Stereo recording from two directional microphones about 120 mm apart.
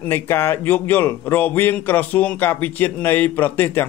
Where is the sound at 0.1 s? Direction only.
20° left (ahead or behind).